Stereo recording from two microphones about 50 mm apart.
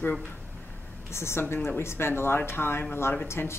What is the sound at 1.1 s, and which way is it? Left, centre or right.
A woman's voice, left.